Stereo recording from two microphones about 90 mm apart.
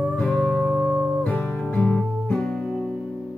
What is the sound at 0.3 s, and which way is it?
Music, 20° left (ahead or behind).